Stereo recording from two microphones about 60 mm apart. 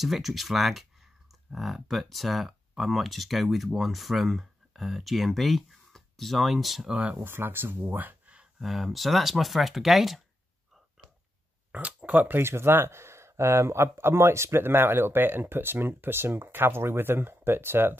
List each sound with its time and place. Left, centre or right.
0.0 s speech: centre
6.9 s speech: right
7.2 s speech: right
8.5 s speech: centre
11.7 s speech: right
12.4 s speech: right